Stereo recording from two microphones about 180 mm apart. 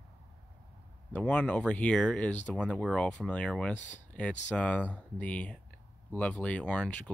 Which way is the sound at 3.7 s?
40° left (ahead or behind).